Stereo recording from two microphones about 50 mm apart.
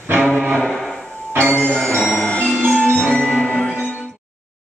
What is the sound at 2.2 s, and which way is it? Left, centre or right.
Music, left.